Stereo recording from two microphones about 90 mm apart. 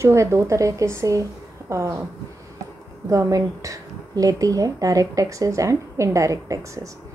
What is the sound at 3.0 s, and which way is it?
A woman's voice, 35° right (ahead or behind).